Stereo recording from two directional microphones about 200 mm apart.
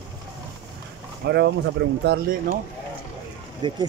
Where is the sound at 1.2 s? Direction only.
60° right (ahead or behind).